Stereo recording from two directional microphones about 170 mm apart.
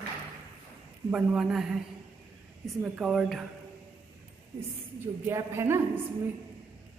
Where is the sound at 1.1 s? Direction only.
5° right (ahead or behind).